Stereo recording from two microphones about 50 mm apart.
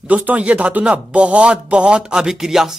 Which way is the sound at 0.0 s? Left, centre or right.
Right.